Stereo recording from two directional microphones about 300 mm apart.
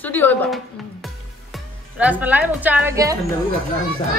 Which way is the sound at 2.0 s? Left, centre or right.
Centre.